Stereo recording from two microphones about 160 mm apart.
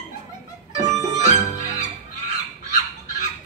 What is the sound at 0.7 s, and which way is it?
Music, 50° left (ahead or behind).